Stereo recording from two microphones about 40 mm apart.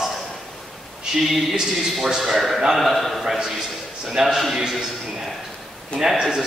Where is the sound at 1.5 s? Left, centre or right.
Centre.